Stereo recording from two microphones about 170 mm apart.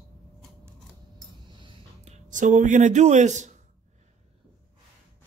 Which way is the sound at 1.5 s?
30° right (ahead or behind).